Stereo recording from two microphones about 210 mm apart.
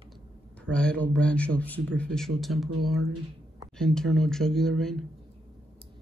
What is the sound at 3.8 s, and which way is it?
Speech, centre (ahead or behind).